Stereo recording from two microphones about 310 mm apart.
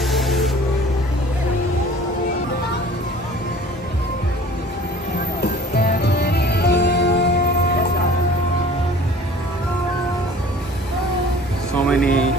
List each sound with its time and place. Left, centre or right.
0.0 s spray: centre
5.4 s music: left
11.7 s music: centre